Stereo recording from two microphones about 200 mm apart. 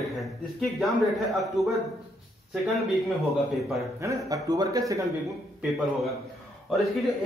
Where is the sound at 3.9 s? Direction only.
15° right (ahead or behind).